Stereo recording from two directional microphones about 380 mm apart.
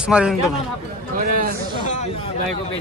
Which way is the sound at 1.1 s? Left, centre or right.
Right.